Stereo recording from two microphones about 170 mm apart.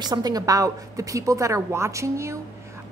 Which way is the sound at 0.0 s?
25° right (ahead or behind).